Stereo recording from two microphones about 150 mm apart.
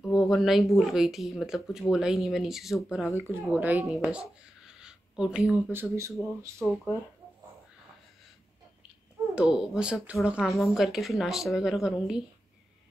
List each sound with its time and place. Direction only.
0.0 s speech: centre (ahead or behind)
3.2 s speech: 15° right (ahead or behind)
9.3 s speech: 5° right (ahead or behind)